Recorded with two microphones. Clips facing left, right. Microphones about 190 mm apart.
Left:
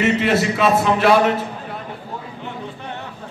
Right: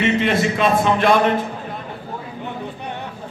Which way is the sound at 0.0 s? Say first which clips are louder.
Even; 5° left (ahead or behind).